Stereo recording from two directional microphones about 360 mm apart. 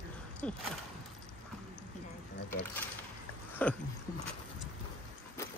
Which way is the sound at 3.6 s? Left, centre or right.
Centre.